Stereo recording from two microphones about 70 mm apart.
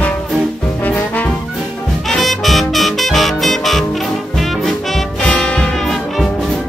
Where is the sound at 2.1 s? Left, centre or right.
Centre.